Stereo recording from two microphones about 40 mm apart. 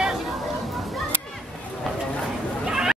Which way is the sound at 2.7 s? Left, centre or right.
Centre.